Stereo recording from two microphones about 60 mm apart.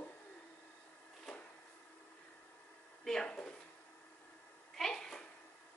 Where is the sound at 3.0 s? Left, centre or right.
Centre.